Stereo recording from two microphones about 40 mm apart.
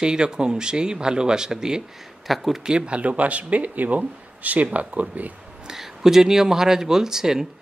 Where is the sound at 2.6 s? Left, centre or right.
Right.